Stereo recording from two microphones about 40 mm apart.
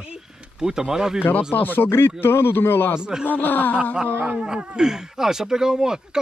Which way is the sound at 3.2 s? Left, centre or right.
Left.